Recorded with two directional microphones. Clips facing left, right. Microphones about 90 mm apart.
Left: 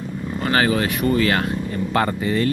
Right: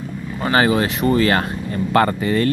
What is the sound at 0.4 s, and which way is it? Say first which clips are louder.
Speech: right 3 dB; 25° right (ahead or behind).